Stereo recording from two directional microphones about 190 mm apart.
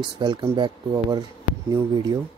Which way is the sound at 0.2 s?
25° right (ahead or behind).